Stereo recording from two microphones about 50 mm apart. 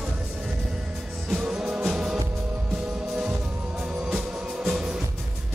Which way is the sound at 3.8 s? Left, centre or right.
Right.